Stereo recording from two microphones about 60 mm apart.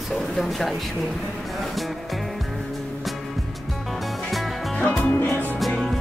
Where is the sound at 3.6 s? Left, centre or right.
Centre.